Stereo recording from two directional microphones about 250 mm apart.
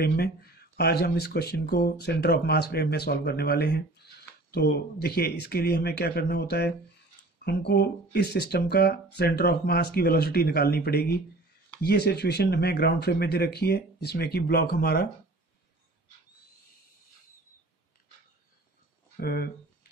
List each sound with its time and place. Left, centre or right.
0.0 s speech: left
19.1 s speech: left